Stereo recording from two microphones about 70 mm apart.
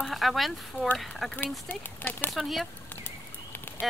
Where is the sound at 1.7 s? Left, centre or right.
Left.